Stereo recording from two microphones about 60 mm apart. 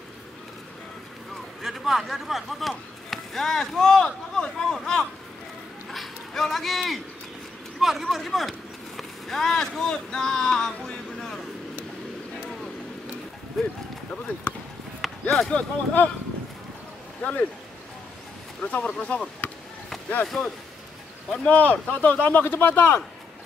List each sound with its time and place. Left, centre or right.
1.6 s speech: centre
14.1 s speech: centre
15.0 s run: centre
15.5 s speech: left
17.2 s speech: left
18.6 s speech: left
20.2 s speech: centre
21.3 s speech: left